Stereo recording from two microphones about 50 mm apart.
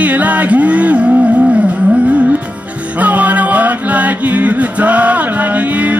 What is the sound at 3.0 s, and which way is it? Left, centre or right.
Music, right.